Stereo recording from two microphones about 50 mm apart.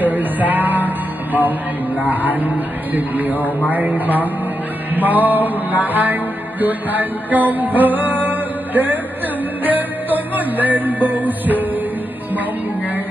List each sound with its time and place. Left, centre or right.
0.0 s music: right
3.3 s a man's voice: left
3.7 s music: right